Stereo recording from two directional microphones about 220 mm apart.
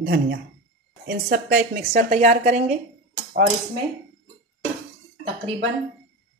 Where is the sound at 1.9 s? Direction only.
35° right (ahead or behind).